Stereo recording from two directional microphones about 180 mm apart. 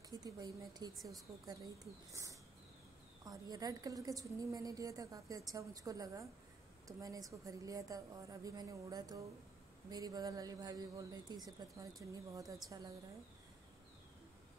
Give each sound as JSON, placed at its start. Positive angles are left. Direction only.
{"t": 0.2, "sound": "a woman's voice", "side_deg": -20}
{"t": 3.3, "sound": "a woman's voice", "side_deg": -20}